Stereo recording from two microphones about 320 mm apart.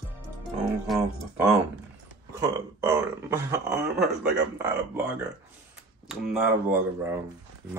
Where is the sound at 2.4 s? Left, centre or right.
Centre.